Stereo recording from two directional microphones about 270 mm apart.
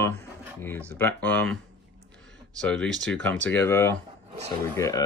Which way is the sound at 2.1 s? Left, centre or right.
Centre.